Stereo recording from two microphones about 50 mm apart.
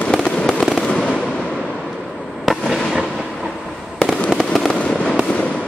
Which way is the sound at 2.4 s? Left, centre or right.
Centre.